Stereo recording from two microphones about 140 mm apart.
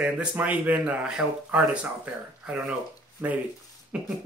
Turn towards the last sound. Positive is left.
turn(degrees=-10)  # may be behind; listen again after turning